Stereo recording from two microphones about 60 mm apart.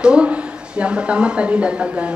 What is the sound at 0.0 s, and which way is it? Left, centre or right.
A woman's voice, centre.